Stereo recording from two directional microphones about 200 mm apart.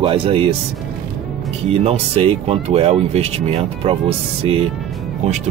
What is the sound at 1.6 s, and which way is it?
Speech, 30° right (ahead or behind).